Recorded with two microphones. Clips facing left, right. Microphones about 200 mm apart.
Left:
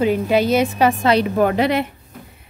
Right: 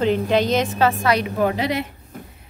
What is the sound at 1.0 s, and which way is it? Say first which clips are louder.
Speech: left 4 dB; 30° left (ahead or behind).